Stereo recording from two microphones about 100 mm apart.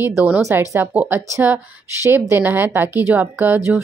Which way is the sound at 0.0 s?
20° right (ahead or behind).